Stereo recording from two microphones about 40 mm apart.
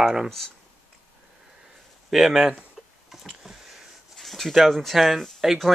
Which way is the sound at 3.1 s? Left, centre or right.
Centre.